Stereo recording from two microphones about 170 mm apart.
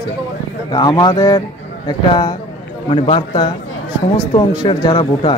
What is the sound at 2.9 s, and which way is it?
A man's voice, 30° left (ahead or behind).